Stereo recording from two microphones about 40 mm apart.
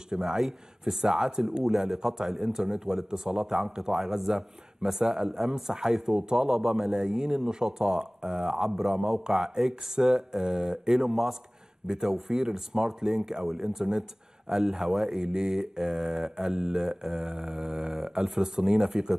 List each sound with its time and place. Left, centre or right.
0.1 s speech: centre